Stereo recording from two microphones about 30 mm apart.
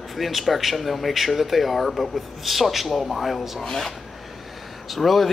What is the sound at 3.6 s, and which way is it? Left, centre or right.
Speech, centre.